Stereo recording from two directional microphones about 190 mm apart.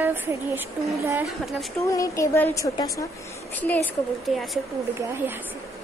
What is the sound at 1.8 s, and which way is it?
Speech, 15° left (ahead or behind).